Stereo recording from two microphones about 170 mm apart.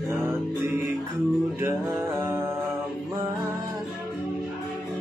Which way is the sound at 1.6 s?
15° right (ahead or behind).